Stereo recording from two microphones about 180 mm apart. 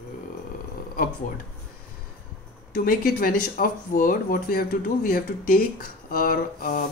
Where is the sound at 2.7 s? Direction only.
55° left (ahead or behind).